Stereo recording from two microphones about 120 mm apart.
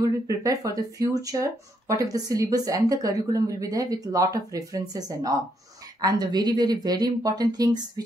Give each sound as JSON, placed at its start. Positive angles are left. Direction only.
{"t": 0.0, "sound": "speech", "side_deg": -30}